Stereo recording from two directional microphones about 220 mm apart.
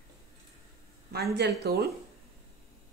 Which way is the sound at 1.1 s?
50° right (ahead or behind).